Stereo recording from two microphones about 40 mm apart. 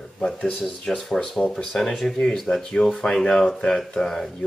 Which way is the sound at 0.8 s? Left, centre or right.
Centre.